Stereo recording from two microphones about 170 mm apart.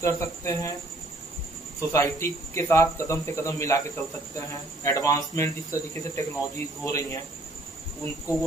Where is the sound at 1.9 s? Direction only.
20° left (ahead or behind).